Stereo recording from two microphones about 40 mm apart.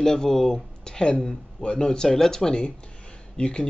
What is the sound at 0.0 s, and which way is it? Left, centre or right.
Speech, centre.